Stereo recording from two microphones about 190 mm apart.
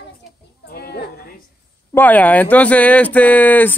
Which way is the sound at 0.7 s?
55° left (ahead or behind).